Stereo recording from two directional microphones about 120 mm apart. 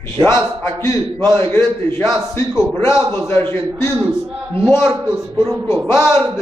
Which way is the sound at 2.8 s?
25° left (ahead or behind).